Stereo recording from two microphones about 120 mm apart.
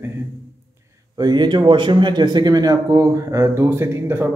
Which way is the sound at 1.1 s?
35° right (ahead or behind).